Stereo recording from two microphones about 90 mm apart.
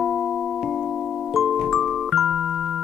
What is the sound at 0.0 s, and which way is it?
Music, 5° right (ahead or behind).